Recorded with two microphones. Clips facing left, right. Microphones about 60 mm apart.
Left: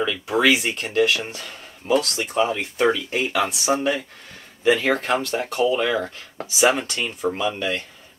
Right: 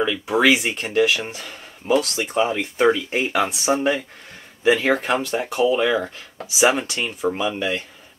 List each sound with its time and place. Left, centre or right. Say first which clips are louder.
0.0 s speech: right 2 dB; centre